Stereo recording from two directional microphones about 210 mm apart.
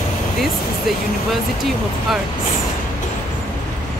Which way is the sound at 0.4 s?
Centre (ahead or behind).